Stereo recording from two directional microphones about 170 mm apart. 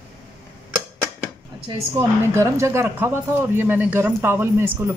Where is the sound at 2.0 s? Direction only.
15° right (ahead or behind).